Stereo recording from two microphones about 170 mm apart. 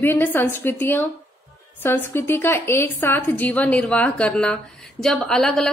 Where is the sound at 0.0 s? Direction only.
10° left (ahead or behind).